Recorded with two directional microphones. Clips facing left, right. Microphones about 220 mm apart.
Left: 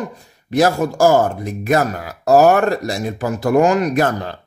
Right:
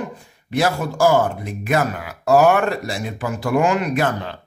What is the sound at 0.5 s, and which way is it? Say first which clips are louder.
Speech: left 5 dB; 45° left (ahead or behind).